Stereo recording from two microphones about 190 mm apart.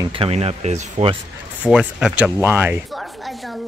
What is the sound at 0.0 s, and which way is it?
Speech, 30° right (ahead or behind).